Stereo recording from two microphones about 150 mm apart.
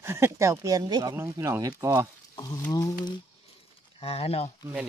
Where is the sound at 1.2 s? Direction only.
15° right (ahead or behind).